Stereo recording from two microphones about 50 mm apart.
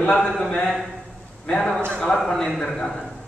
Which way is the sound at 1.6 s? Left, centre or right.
Centre.